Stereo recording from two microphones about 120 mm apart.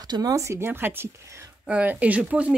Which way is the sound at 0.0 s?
30° right (ahead or behind).